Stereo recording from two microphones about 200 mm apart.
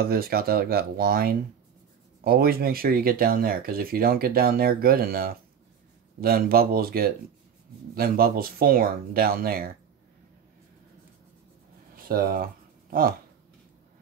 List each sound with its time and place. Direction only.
0.0 s speech: 50° right (ahead or behind)
11.9 s speech: 45° right (ahead or behind)